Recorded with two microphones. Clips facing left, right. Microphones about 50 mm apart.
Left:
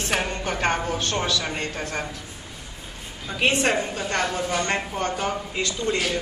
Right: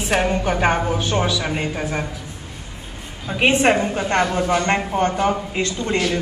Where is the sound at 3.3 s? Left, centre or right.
Right.